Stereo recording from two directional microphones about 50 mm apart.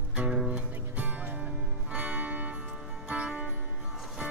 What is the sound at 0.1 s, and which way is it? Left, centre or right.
Music, right.